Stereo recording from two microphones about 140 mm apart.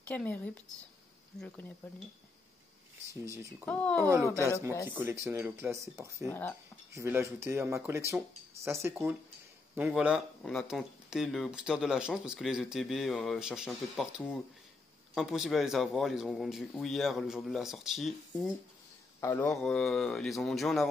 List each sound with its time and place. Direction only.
0.1 s speech: 10° left (ahead or behind)
3.6 s speech: 10° left (ahead or behind)
4.0 s speech: 20° right (ahead or behind); by 18.5 s centre (ahead or behind)
19.1 s a sound: 20° left (ahead or behind)
19.4 s speech: 5° left (ahead or behind)